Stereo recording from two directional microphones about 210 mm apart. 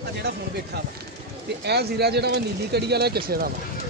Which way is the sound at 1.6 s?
50° right (ahead or behind).